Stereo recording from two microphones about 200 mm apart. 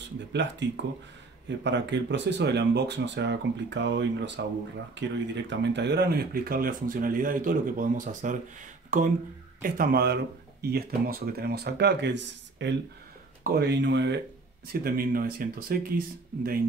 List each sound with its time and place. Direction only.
0.3 s speech: 60° right (ahead or behind)
13.4 s speech: 50° right (ahead or behind)
14.7 s speech: 45° right (ahead or behind)